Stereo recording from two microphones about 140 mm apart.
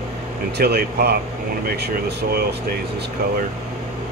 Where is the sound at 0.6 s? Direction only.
90° right.